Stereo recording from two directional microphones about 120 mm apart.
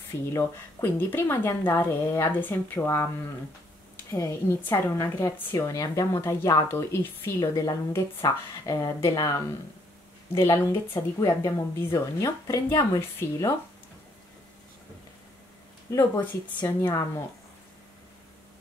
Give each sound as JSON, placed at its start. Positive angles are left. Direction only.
{"t": 0.3, "sound": "a woman's voice", "side_deg": 25}
{"t": 4.1, "sound": "a woman's voice", "side_deg": 25}
{"t": 10.4, "sound": "a woman's voice", "side_deg": 20}
{"t": 15.9, "sound": "a woman's voice", "side_deg": 20}